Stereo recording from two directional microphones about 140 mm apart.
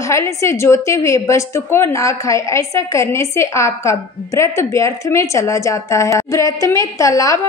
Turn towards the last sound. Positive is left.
turn(degrees=25)  # may be behind; listen again after turning